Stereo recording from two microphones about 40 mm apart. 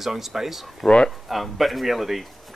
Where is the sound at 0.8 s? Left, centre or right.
Left.